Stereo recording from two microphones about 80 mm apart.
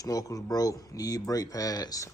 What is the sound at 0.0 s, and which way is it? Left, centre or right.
Speech, left.